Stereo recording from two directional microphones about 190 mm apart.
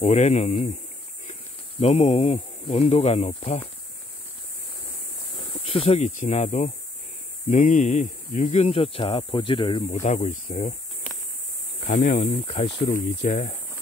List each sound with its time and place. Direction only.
0.0 s speech: 40° left (ahead or behind)
1.8 s speech: 35° left (ahead or behind)
5.6 s speech: 30° left (ahead or behind)
10.0 s speech: 40° left (ahead or behind)
11.8 s speech: 45° left (ahead or behind)
12.4 s speech: 30° left (ahead or behind)